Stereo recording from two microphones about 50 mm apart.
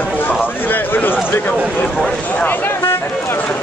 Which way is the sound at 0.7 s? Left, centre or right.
Left.